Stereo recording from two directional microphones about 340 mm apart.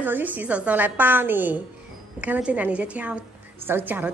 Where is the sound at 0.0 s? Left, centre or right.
Centre.